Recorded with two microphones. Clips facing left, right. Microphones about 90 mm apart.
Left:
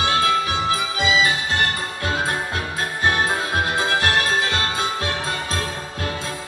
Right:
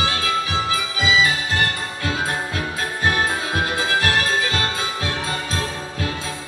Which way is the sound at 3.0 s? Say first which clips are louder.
Left 1 dB; 40° left (ahead or behind).